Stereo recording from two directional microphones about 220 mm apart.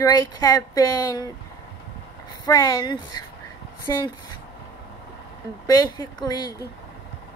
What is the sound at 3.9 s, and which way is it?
Speech, 15° left (ahead or behind).